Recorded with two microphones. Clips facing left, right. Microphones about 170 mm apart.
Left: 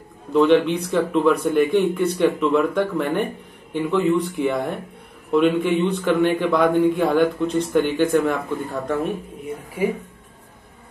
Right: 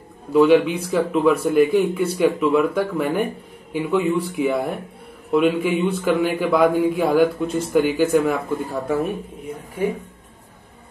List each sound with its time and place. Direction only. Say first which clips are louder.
0.3 s a man's voice: right 1 dB; 5° right (ahead or behind)